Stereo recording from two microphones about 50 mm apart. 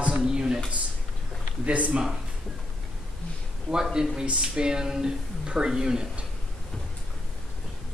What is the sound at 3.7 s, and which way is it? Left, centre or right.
Speech, centre.